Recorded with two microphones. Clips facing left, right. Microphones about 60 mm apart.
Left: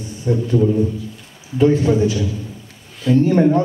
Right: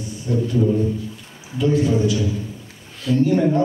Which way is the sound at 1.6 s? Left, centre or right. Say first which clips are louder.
Left 4 dB; left.